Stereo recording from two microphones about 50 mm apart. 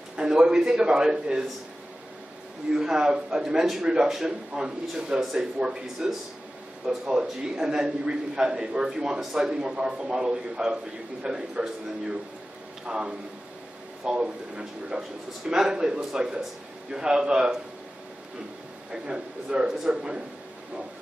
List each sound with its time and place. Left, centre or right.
0.2 s a man's voice: centre
2.7 s a man's voice: centre
7.1 s a man's voice: centre
18.9 s a man's voice: centre